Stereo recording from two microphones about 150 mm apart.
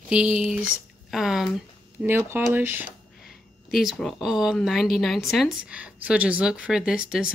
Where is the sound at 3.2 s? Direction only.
Centre (ahead or behind).